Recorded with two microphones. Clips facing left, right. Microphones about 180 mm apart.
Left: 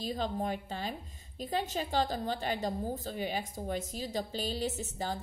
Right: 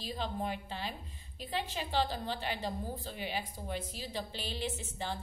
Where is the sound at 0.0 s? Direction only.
45° left (ahead or behind).